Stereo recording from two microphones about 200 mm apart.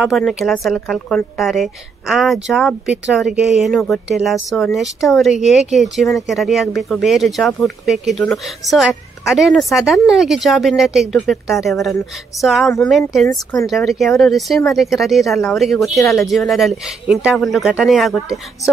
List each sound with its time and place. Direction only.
0.0 s speech: centre (ahead or behind)
13.3 s speech: 20° left (ahead or behind)
13.7 s speech: centre (ahead or behind)